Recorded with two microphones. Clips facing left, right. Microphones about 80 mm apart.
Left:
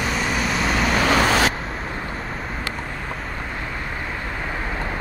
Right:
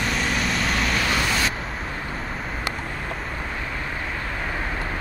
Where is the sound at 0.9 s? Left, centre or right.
Left.